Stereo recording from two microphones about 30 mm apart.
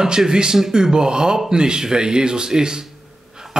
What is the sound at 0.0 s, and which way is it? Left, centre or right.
Speech, right.